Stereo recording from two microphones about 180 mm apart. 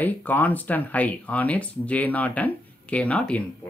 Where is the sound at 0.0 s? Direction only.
10° left (ahead or behind).